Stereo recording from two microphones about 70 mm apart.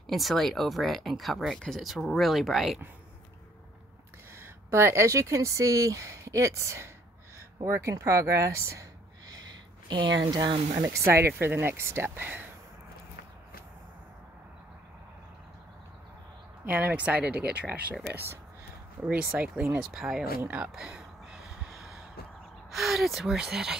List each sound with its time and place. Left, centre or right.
0.0 s speech: centre
4.4 s speech: right
7.3 s a sound: right
7.9 s speech: right
9.3 s a sound: right
10.3 s speech: right
10.9 s speech: right
12.2 s speech: right
16.6 s speech: right
19.0 s speech: centre
20.4 s a sound: centre
22.7 s speech: centre